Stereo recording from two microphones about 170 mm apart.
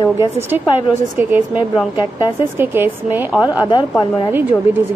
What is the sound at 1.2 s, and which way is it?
Speech, 10° right (ahead or behind).